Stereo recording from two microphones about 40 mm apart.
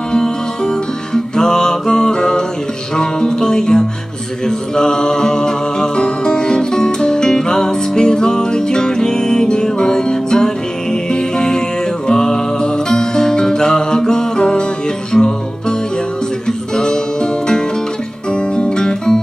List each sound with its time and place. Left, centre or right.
0.1 s music: centre
16.4 s music: centre